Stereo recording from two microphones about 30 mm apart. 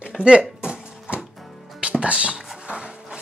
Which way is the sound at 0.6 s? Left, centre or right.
Right.